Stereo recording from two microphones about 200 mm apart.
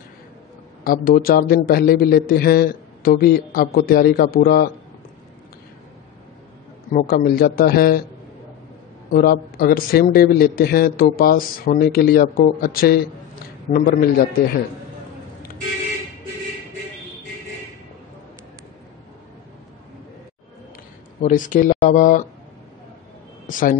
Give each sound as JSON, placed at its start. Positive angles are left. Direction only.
{"t": 0.8, "sound": "speech", "side_deg": 45}
{"t": 6.9, "sound": "speech", "side_deg": 45}
{"t": 9.1, "sound": "speech", "side_deg": 45}
{"t": 21.2, "sound": "speech", "side_deg": 40}
{"t": 23.5, "sound": "speech", "side_deg": 40}